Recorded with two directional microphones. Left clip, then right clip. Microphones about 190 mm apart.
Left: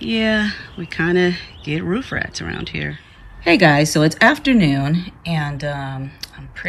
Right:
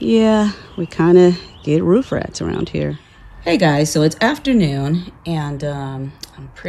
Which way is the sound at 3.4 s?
10° right (ahead or behind).